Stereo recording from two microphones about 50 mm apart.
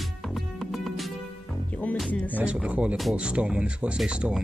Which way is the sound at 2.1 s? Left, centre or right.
Left.